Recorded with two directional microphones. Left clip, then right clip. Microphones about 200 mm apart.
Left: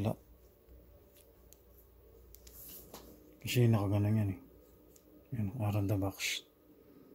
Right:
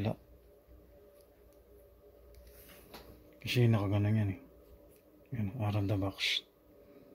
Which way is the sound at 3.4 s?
5° left (ahead or behind).